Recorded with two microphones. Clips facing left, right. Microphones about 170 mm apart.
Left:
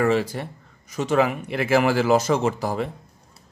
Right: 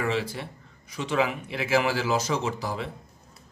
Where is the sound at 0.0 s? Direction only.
45° left (ahead or behind).